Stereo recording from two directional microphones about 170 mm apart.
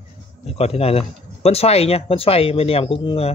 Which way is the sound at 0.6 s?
35° left (ahead or behind).